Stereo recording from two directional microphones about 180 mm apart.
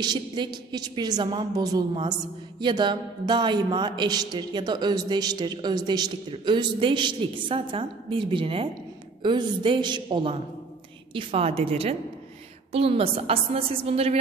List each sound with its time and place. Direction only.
0.0 s a man's voice: 25° right (ahead or behind)